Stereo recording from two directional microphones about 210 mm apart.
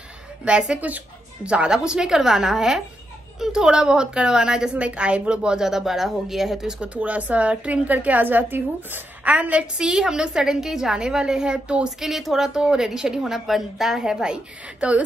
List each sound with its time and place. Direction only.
0.5 s a woman's voice: 5° right (ahead or behind)